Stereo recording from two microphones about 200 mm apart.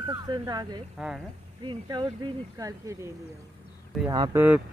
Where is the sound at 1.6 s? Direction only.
25° right (ahead or behind).